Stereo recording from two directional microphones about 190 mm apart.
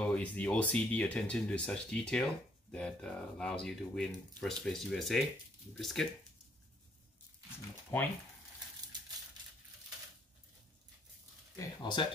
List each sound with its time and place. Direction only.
0.0 s speech: 5° left (ahead or behind)
7.9 s speech: 10° left (ahead or behind)
11.5 s speech: 25° left (ahead or behind)